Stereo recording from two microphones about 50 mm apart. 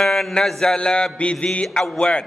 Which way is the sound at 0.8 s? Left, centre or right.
Centre.